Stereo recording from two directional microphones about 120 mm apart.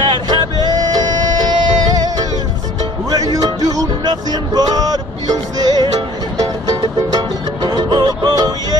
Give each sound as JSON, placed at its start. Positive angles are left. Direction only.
{"t": 0.0, "sound": "music", "side_deg": -40}